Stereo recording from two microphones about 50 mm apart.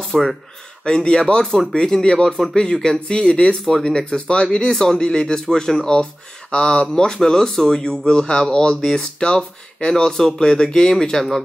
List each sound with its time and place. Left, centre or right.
0.0 s speech: centre
0.8 s speech: centre
3.6 s speech: centre
6.5 s speech: left